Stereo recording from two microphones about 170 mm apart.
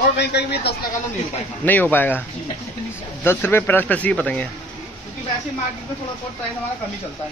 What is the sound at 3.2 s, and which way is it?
Speech, 15° left (ahead or behind).